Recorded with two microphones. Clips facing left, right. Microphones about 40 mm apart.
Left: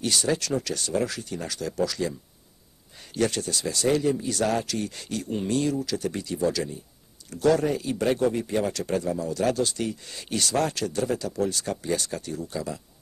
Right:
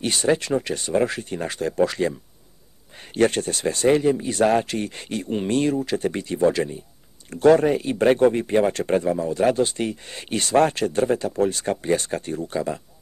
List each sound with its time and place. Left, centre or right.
0.0 s speech: right
3.2 s speech: right